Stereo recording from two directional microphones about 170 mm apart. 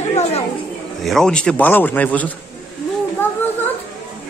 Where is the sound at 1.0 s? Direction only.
5° left (ahead or behind).